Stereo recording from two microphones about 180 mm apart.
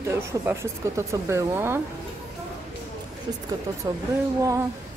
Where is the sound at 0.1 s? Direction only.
15° right (ahead or behind).